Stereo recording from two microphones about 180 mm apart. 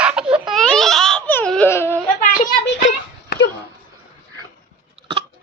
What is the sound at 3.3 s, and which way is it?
Dog, 60° left (ahead or behind).